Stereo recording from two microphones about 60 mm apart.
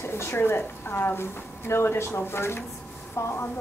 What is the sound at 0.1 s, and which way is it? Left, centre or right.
A woman's voice, left.